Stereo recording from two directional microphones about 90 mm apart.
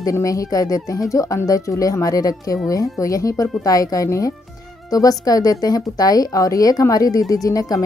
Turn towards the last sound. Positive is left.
turn(degrees=40)  # may be behind; listen again after turning